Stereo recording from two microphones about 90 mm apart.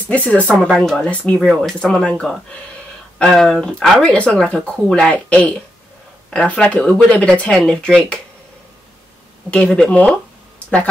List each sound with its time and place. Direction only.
0.1 s speech: 15° left (ahead or behind)
9.5 s speech: 10° left (ahead or behind)